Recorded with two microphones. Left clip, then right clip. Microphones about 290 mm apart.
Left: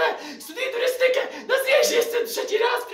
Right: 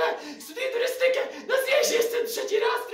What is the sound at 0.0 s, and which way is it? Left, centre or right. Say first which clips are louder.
Chuckle: left 3 dB; centre.